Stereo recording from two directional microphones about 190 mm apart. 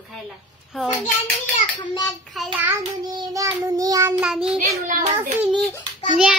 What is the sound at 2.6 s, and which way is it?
Child singing, 15° right (ahead or behind).